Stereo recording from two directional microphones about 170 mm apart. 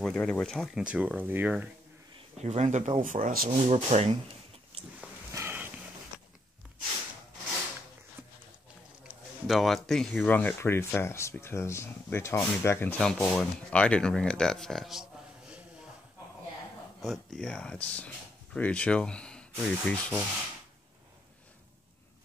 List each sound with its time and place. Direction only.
0.0 s speech: 5° left (ahead or behind)
2.4 s speech: 40° right (ahead or behind)
5.3 s a sound: 15° right (ahead or behind)
9.0 s speech: centre (ahead or behind)
17.0 s speech: centre (ahead or behind)